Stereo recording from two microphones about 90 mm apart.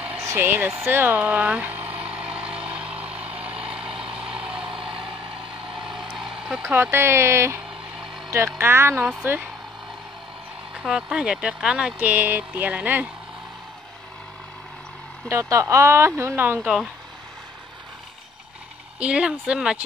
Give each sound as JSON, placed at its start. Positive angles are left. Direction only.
{"t": 0.2, "sound": "speech", "side_deg": -30}
{"t": 1.2, "sound": "a sound", "side_deg": -15}
{"t": 2.7, "sound": "vehicle", "side_deg": -10}
{"t": 4.1, "sound": "vehicle", "side_deg": -90}
{"t": 4.6, "sound": "vehicle", "side_deg": -5}
{"t": 6.6, "sound": "speech", "side_deg": -25}
{"t": 10.8, "sound": "speech", "side_deg": -10}
{"t": 15.2, "sound": "speech", "side_deg": -30}
{"t": 18.9, "sound": "speech", "side_deg": -10}